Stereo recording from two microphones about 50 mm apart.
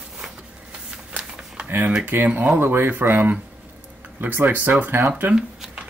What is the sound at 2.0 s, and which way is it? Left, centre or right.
Speech, right.